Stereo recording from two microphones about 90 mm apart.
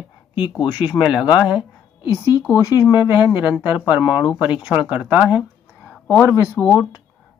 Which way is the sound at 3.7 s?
15° right (ahead or behind).